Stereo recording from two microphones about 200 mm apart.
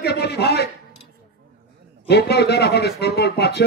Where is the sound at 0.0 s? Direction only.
55° left (ahead or behind).